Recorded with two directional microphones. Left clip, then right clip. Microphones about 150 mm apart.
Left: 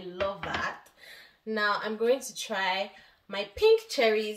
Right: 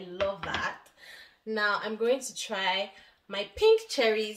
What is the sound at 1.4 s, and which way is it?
Speech, 5° right (ahead or behind).